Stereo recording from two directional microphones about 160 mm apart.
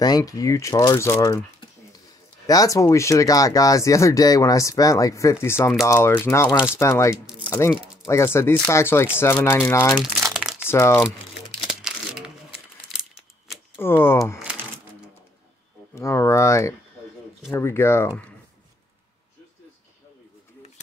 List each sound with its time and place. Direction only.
0.0 s speech: 25° left (ahead or behind)
2.4 s speech: 20° left (ahead or behind)
9.9 s crumpling: centre (ahead or behind)
10.7 s speech: 15° left (ahead or behind)
11.6 s crumpling: 5° right (ahead or behind)
13.7 s speech: 15° left (ahead or behind)
15.9 s speech: 15° left (ahead or behind)